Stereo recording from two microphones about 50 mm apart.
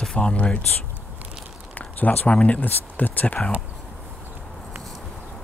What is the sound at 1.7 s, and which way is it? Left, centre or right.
Speech, left.